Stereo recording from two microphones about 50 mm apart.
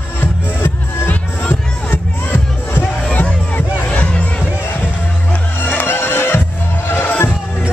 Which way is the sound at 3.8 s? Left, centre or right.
Left.